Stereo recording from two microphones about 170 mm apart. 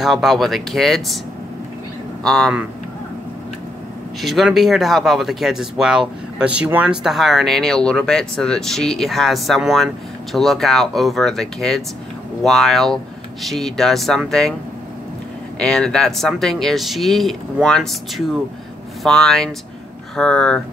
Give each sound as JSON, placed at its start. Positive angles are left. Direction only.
{"t": 0.0, "sound": "speech", "side_deg": 0}
{"t": 2.2, "sound": "speech", "side_deg": 5}
{"t": 4.2, "sound": "speech", "side_deg": 0}
{"t": 15.6, "sound": "speech", "side_deg": 5}